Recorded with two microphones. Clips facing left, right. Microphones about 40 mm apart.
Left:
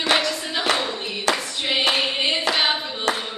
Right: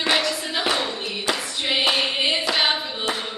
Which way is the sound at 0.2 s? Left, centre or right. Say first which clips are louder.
Even; centre.